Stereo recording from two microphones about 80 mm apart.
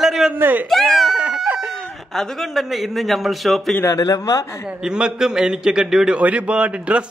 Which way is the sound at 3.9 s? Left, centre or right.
Left.